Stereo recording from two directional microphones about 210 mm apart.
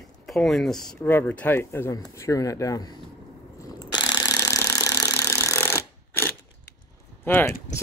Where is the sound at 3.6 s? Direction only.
20° left (ahead or behind).